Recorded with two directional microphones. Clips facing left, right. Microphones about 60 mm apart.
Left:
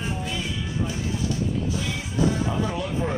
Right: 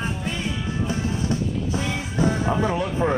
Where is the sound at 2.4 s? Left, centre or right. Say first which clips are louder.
Right 4 dB; right.